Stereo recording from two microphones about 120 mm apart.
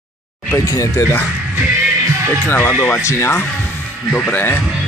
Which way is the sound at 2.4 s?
15° left (ahead or behind).